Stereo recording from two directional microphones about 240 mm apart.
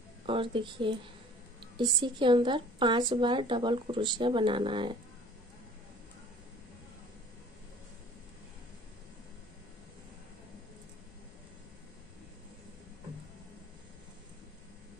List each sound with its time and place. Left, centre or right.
0.3 s a woman's voice: right